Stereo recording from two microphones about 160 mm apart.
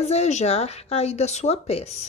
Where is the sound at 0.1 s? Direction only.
45° left (ahead or behind).